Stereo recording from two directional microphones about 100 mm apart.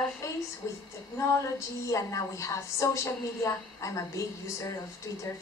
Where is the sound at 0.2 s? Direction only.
30° left (ahead or behind).